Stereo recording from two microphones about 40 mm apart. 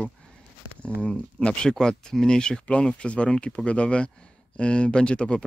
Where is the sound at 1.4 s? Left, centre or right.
Centre.